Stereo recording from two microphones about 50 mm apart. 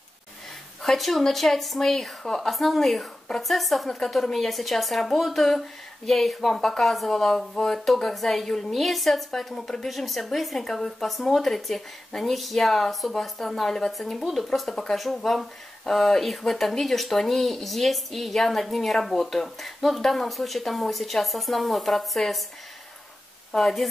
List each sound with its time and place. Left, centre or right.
0.8 s a woman's voice: centre
23.5 s a woman's voice: centre